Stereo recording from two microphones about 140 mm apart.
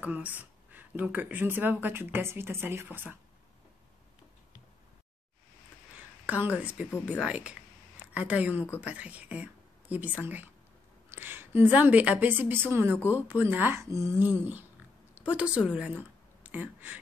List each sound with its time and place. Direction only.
0.0 s a woman's voice: 10° right (ahead or behind)
5.9 s a sound: 10° right (ahead or behind)
7.1 s a woman's voice: 10° right (ahead or behind)